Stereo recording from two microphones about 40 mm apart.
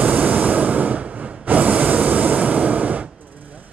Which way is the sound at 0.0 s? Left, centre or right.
Right.